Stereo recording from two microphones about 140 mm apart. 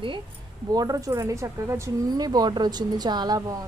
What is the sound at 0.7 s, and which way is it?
A woman's voice, 25° right (ahead or behind).